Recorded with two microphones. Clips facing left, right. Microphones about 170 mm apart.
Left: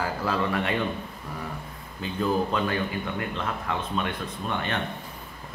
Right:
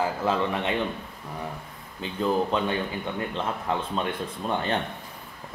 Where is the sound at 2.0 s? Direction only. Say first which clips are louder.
Right 1 dB; 20° right (ahead or behind).